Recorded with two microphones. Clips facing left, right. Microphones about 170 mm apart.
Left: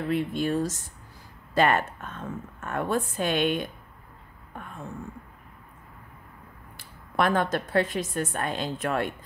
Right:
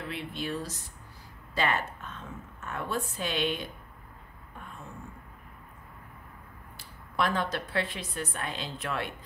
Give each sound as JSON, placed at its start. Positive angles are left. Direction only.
{"t": 0.1, "sound": "a woman's voice", "side_deg": 45}
{"t": 7.2, "sound": "a woman's voice", "side_deg": 55}